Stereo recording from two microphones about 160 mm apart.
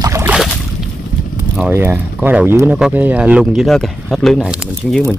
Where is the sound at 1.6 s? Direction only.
15° right (ahead or behind).